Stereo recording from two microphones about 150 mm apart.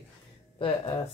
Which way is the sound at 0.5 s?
35° left (ahead or behind).